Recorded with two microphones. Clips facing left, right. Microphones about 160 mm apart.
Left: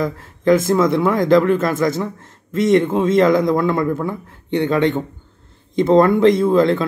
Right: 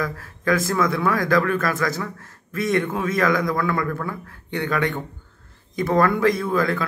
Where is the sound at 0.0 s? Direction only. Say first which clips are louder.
Left 7 dB; 25° left (ahead or behind).